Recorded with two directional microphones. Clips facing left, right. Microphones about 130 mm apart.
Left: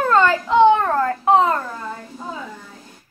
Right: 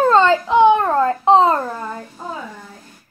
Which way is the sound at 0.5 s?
15° right (ahead or behind).